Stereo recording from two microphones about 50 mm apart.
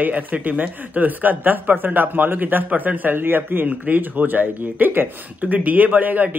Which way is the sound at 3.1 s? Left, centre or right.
Right.